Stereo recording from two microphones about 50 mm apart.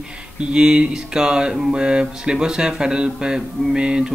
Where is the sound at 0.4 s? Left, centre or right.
Centre.